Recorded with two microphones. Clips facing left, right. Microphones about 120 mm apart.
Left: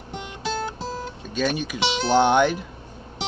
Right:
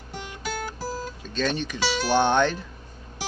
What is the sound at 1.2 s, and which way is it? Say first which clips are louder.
Speech: left 2 dB; 10° left (ahead or behind).